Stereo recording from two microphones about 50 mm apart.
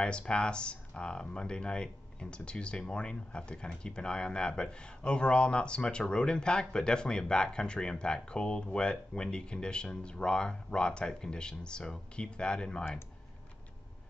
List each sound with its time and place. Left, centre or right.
0.0 s speech: centre